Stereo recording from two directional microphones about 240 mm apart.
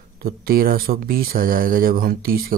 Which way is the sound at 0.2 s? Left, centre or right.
Right.